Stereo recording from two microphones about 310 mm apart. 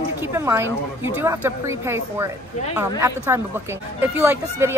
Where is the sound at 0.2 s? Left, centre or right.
Centre.